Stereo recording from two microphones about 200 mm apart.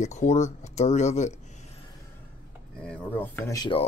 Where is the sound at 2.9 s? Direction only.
10° left (ahead or behind).